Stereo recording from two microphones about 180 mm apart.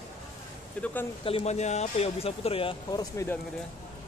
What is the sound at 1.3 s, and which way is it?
Speech, 35° left (ahead or behind).